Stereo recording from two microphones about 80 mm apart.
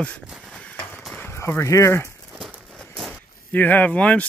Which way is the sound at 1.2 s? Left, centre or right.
Left.